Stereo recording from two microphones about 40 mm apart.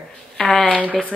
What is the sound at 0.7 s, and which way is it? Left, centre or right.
Speech, right.